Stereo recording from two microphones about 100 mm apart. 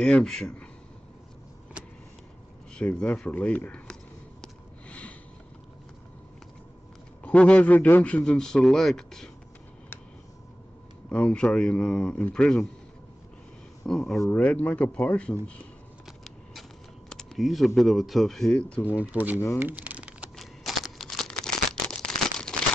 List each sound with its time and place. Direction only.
0.0 s a man's voice: 5° left (ahead or behind)
2.7 s a man's voice: 10° left (ahead or behind)
4.4 s snort: 15° left (ahead or behind)
7.2 s a man's voice: 10° left (ahead or behind)
11.1 s a man's voice: 10° left (ahead or behind)
13.8 s a man's voice: 5° left (ahead or behind)
16.1 s vehicle: centre (ahead or behind)
17.1 s speech: centre (ahead or behind)
18.9 s speech: 15° right (ahead or behind)
19.6 s typing: 15° right (ahead or behind)
20.3 s a sound: centre (ahead or behind)